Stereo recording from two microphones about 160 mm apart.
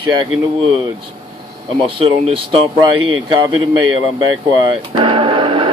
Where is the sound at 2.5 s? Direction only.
35° right (ahead or behind).